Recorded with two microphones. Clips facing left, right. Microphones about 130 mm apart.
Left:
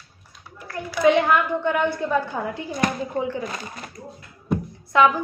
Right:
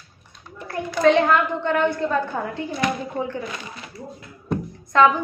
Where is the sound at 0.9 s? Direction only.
10° left (ahead or behind).